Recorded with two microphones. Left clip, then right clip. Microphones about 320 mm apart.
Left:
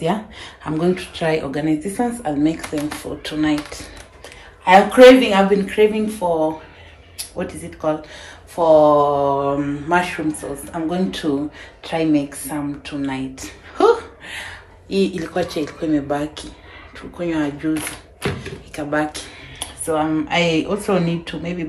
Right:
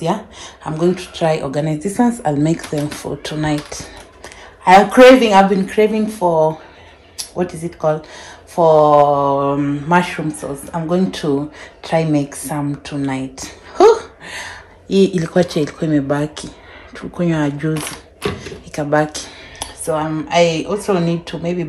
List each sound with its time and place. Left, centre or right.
0.0 s speech: centre
5.2 s speech: centre